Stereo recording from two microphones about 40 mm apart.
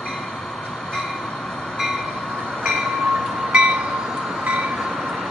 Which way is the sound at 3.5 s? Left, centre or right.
Right.